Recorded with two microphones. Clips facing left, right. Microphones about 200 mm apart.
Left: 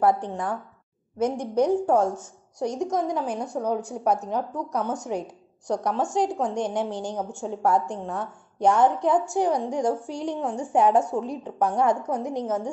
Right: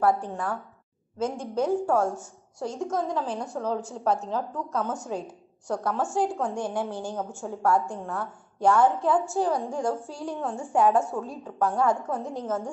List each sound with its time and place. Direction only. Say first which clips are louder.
0.0 s a woman's voice: left 2 dB; 15° left (ahead or behind)